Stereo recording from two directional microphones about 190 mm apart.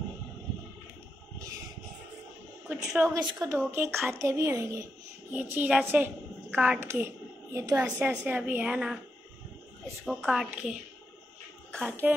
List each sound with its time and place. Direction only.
2.7 s a woman's voice: 5° right (ahead or behind)
3.1 s a woman's voice: 20° right (ahead or behind)
10.0 s a woman's voice: centre (ahead or behind)
11.8 s a woman's voice: 10° right (ahead or behind)